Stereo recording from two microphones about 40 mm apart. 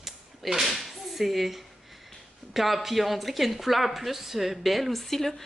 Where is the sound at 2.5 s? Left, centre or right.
Centre.